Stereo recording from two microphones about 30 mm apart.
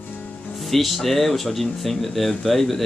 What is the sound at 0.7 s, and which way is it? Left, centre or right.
Speech, centre.